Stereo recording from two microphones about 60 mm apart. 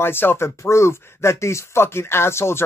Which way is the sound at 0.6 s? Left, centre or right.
Left.